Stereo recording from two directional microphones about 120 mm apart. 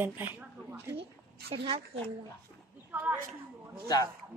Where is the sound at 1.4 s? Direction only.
55° right (ahead or behind).